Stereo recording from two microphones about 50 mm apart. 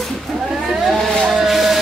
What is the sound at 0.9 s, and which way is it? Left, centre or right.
Vehicle, centre.